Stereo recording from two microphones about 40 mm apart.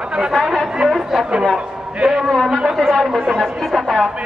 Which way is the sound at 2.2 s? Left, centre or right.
Centre.